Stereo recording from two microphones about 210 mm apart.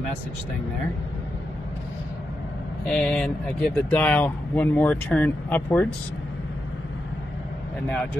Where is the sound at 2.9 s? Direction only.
Centre (ahead or behind).